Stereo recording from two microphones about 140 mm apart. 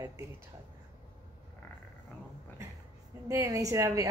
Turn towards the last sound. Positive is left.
turn(degrees=-25)  # may be behind; listen again after turning